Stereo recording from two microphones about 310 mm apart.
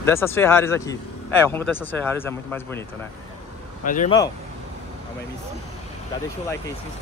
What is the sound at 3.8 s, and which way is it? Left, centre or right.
Speech, left.